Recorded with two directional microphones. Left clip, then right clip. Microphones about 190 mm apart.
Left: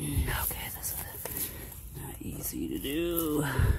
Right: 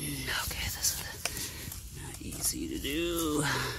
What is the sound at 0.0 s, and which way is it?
Whispering, 25° left (ahead or behind).